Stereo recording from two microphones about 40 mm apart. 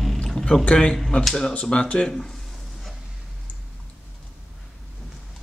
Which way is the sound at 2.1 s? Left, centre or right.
Centre.